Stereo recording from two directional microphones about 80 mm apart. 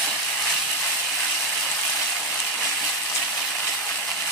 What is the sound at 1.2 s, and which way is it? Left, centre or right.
Ratchet, centre.